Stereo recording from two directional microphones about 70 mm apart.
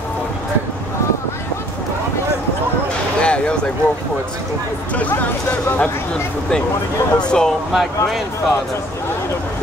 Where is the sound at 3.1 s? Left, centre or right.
Centre.